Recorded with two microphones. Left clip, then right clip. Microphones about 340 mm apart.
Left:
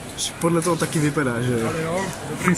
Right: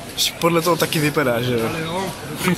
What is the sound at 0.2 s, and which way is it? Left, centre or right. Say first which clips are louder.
Speech: right 4 dB; centre.